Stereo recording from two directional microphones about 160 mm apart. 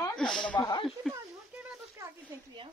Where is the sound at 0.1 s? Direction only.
5° left (ahead or behind).